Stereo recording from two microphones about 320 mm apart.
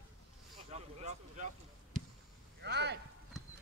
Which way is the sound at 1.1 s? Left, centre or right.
Right.